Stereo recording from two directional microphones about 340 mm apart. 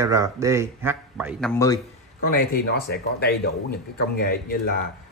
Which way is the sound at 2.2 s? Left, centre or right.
Left.